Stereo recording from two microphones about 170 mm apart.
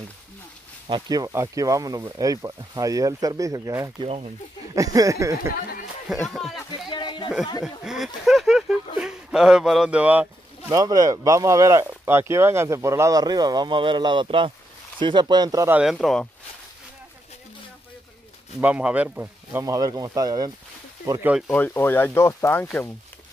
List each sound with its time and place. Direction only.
0.8 s speech: 25° right (ahead or behind)
5.5 s speech: 60° left (ahead or behind)
6.2 s speech: centre (ahead or behind)
6.9 s a sound: 25° left (ahead or behind)
7.6 s speech: 5° right (ahead or behind)
10.7 s speech: 20° right (ahead or behind)
15.8 s speech: centre (ahead or behind)
18.6 s speech: 10° right (ahead or behind)
19.6 s speech: 20° right (ahead or behind)
21.5 s speech: 10° left (ahead or behind)